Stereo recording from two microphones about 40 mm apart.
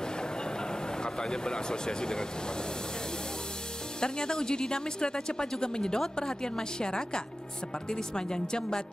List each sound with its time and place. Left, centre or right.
1.0 s speech: centre
4.0 s speech: centre